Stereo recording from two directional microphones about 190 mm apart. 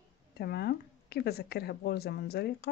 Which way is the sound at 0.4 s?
55° left (ahead or behind).